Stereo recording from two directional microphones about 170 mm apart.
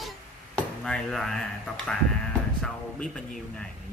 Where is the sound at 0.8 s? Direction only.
5° left (ahead or behind).